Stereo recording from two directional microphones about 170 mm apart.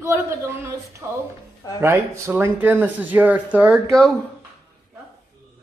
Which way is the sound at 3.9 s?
5° left (ahead or behind).